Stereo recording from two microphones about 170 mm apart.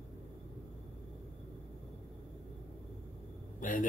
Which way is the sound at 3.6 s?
50° left (ahead or behind).